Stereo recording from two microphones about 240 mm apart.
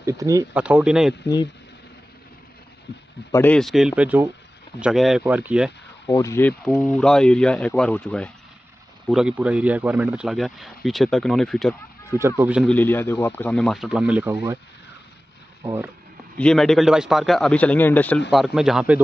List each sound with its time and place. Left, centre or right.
0.0 s a man's voice: centre
1.2 s speech: centre
3.3 s a man's voice: centre
6.0 s a man's voice: centre
12.1 s speech: centre
12.7 s a man's voice: centre
15.6 s speech: centre
16.3 s a man's voice: centre